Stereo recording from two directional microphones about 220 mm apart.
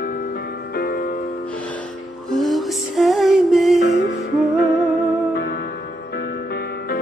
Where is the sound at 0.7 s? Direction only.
45° left (ahead or behind).